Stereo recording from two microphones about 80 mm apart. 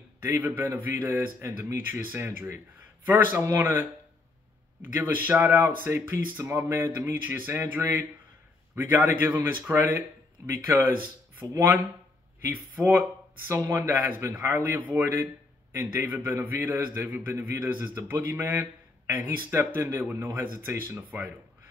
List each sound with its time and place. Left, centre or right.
0.4 s speech: right
1.4 s speech: right
4.8 s speech: right
12.4 s speech: right